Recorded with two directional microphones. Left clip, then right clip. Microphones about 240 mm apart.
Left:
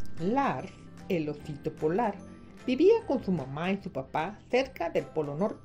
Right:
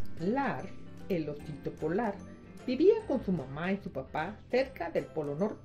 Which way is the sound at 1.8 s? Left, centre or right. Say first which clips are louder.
Left 4 dB; left.